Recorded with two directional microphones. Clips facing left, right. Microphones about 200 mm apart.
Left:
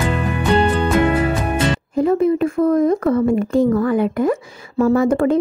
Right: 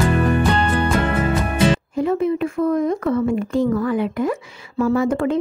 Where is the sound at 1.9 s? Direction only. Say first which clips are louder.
Left 4 dB; 40° left (ahead or behind).